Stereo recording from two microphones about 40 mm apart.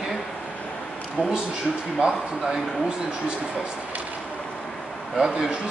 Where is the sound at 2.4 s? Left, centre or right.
Centre.